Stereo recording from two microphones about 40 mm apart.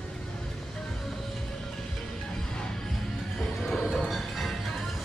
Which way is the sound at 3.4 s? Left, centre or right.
Centre.